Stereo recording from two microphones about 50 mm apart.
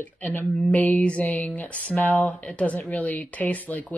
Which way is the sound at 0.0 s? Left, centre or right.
Left.